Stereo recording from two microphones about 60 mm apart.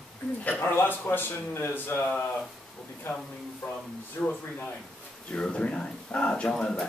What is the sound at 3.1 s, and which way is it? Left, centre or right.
Speech, left.